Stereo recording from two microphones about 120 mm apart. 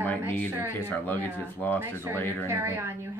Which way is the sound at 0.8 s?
15° left (ahead or behind).